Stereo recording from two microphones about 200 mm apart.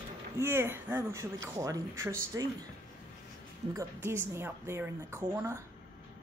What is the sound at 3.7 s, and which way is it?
A woman's voice, 15° right (ahead or behind).